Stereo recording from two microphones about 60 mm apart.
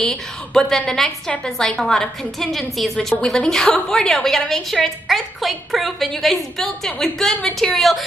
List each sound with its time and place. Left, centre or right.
0.0 s a woman's voice: centre
1.3 s a woman's voice: centre
1.8 s a woman's voice: centre